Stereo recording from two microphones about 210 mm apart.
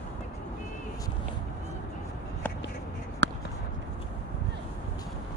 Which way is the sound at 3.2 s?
60° right (ahead or behind).